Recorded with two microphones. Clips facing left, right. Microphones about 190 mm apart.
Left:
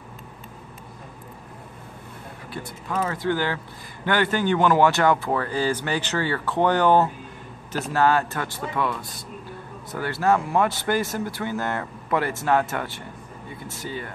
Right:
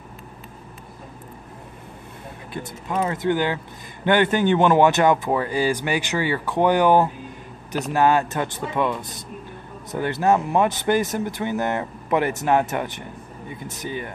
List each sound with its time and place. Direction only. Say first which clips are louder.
2.5 s speech: right 2 dB; 20° right (ahead or behind)